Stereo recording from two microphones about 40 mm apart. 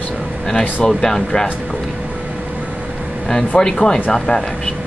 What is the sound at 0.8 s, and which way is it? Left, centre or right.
Speech, centre.